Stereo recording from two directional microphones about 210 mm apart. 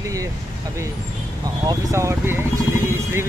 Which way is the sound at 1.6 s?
15° right (ahead or behind).